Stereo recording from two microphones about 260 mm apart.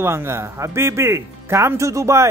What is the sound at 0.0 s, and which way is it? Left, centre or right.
Speech, centre.